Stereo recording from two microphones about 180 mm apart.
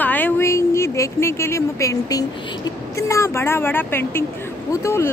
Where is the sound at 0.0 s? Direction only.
10° left (ahead or behind).